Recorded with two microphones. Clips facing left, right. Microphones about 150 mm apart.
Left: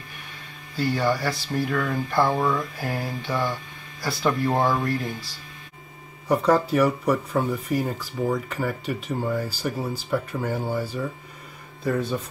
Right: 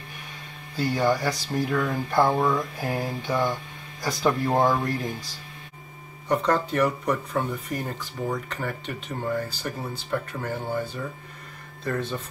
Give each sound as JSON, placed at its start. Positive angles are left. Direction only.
{"t": 0.7, "sound": "speech", "side_deg": -15}
{"t": 6.2, "sound": "speech", "side_deg": 5}